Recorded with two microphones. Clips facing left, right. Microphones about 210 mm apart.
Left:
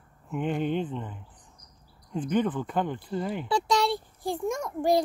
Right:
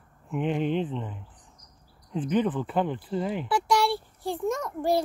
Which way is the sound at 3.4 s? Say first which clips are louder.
Even; 20° left (ahead or behind).